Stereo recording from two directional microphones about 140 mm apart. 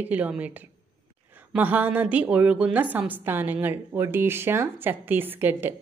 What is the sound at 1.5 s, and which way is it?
A woman's voice, 10° right (ahead or behind).